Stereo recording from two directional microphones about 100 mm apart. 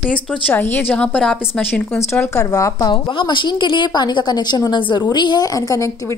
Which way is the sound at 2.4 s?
30° left (ahead or behind).